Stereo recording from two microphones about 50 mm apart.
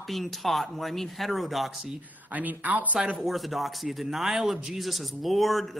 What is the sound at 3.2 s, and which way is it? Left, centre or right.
Speech, centre.